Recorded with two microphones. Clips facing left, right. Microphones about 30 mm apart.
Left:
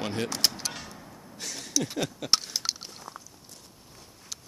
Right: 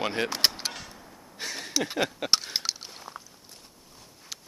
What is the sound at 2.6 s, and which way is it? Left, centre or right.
Biting, centre.